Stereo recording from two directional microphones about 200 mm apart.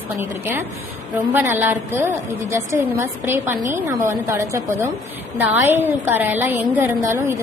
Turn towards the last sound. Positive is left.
turn(degrees=-10)  # may be behind; listen again after turning